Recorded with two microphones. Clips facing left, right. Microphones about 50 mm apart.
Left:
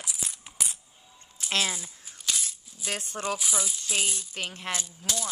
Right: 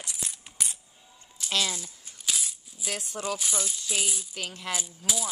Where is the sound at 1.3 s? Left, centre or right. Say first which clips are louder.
Left 1 dB; left.